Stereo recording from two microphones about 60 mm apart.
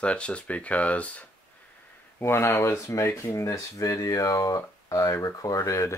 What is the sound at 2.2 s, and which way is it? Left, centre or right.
Speech, left.